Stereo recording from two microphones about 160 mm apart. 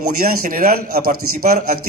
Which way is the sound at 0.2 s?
65° right (ahead or behind).